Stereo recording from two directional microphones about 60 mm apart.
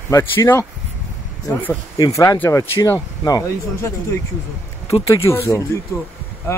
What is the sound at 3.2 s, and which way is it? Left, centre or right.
Speech, left.